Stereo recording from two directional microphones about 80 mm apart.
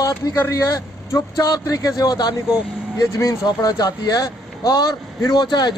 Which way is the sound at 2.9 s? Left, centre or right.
Left.